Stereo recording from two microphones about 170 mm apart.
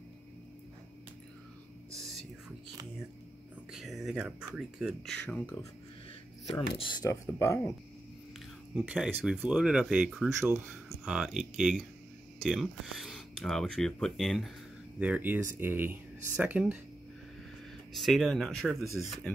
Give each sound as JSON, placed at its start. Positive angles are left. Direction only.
{"t": 2.0, "sound": "whispering", "side_deg": 0}
{"t": 3.7, "sound": "speech", "side_deg": 0}
{"t": 6.8, "sound": "speech", "side_deg": 25}
{"t": 8.7, "sound": "speech", "side_deg": -5}
{"t": 10.4, "sound": "speech", "side_deg": -15}
{"t": 11.1, "sound": "speech", "side_deg": -5}
{"t": 17.9, "sound": "speech", "side_deg": 0}